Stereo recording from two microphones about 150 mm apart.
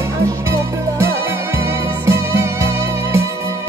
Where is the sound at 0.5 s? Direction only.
20° right (ahead or behind).